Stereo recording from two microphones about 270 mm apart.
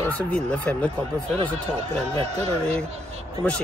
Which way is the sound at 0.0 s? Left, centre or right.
Centre.